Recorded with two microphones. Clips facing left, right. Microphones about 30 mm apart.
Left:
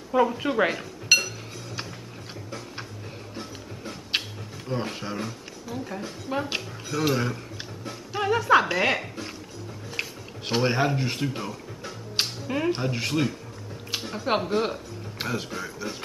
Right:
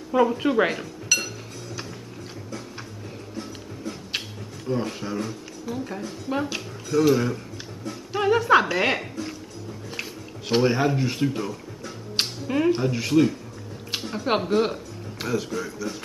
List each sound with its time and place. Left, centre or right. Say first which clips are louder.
0.1 s speech: right 2 dB; centre
1.1 s chink: left 4 dB; left
4.2 s a sound: left 5 dB; centre
4.6 s speech: right 3 dB; centre
5.7 s speech: right 2 dB; centre
6.9 s speech: right 5 dB; centre
8.1 s speech: right 2 dB; centre
10.6 s speech: right 2 dB; centre
12.2 s music: right 3 dB; centre
12.9 s speech: right 6 dB; centre
14.0 s speech: right 2 dB; centre
15.3 s speech: right 4 dB; centre